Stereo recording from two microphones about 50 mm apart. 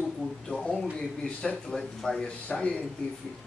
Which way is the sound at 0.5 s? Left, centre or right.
Left.